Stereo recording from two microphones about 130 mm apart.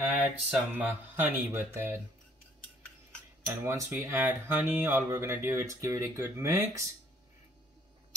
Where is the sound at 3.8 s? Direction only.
15° right (ahead or behind).